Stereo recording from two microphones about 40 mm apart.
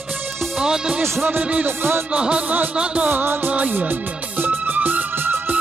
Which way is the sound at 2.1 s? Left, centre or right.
Right.